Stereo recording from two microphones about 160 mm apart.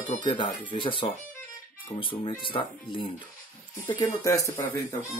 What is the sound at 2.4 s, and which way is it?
Speech, 30° left (ahead or behind).